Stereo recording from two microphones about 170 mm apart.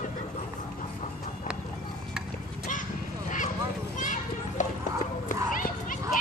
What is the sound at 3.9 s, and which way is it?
Children playing, 50° left (ahead or behind).